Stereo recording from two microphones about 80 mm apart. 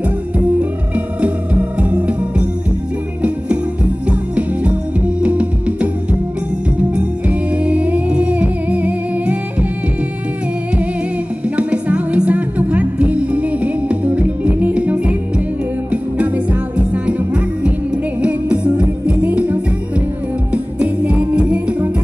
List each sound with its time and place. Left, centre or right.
0.6 s music: centre
4.1 s music: centre
7.0 s music: centre
11.4 s music: centre
18.2 s music: centre
20.5 s music: centre